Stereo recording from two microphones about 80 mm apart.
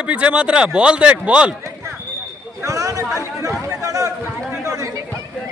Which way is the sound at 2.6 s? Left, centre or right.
Right.